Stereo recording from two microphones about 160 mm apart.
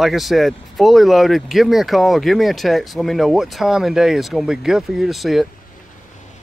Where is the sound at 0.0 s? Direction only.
Centre (ahead or behind).